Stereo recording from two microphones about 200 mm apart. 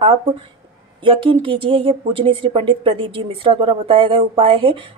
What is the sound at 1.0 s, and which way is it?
Speech, 25° right (ahead or behind).